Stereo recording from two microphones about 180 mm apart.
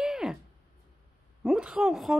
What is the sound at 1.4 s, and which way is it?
Speech, 5° right (ahead or behind).